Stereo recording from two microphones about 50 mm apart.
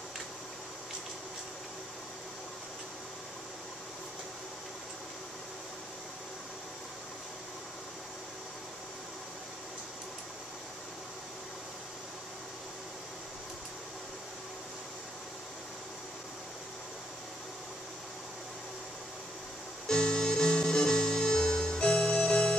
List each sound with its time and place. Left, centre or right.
19.9 s music: centre